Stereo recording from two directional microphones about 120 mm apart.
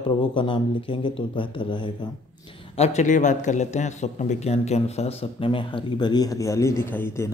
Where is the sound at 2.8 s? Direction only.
70° left (ahead or behind); by 7.3 s 20° left (ahead or behind).